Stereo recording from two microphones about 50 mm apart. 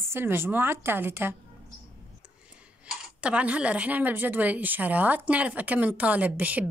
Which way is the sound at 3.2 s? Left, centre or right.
Right.